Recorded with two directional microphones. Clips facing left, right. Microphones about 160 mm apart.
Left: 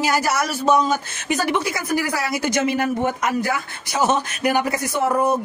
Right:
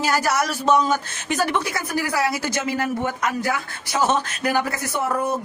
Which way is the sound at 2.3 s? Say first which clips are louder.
Left 4 dB; 20° left (ahead or behind).